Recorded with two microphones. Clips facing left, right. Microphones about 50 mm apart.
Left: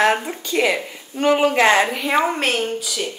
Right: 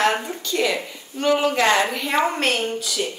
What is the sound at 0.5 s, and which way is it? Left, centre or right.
A woman's voice, left.